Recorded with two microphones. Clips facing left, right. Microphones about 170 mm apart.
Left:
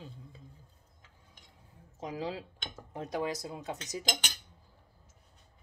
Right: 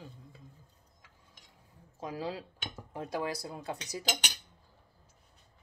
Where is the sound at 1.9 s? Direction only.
20° left (ahead or behind).